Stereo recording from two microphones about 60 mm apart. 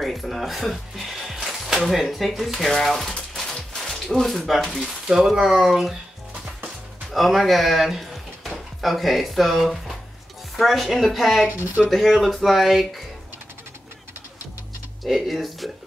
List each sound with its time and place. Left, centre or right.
0.0 s speech: centre
4.8 s speech: centre
7.1 s speech: centre
11.4 s speech: right
11.9 s speech: centre
15.0 s speech: centre